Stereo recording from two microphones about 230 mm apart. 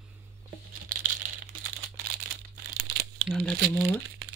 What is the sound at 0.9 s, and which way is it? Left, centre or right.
Crumpling, right.